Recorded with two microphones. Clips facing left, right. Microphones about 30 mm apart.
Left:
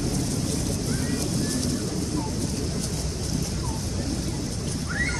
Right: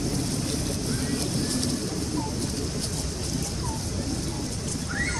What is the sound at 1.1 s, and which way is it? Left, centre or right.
Vehicle, right.